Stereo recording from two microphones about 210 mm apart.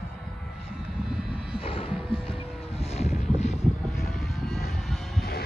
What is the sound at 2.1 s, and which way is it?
Vehicle, 25° left (ahead or behind).